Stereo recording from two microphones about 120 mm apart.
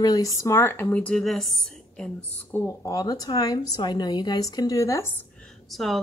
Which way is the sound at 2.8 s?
30° left (ahead or behind).